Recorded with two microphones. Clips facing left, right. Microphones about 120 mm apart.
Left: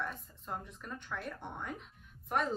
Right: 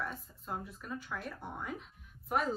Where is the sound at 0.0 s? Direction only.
5° right (ahead or behind).